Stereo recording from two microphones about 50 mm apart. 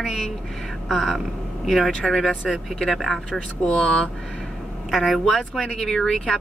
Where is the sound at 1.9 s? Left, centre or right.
Centre.